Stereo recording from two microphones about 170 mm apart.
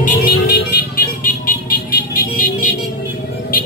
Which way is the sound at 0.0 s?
60° left (ahead or behind).